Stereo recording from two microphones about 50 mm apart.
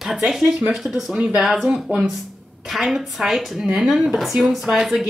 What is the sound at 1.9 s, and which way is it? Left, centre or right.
Speech, right.